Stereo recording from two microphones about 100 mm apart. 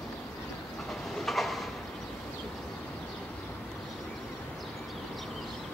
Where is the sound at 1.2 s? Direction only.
Centre (ahead or behind).